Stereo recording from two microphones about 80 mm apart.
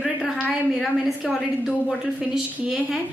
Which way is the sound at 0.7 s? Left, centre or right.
Centre.